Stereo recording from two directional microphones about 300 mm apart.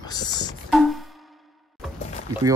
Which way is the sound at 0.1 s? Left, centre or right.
Centre.